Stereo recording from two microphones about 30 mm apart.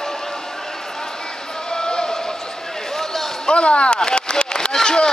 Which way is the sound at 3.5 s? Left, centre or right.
Left.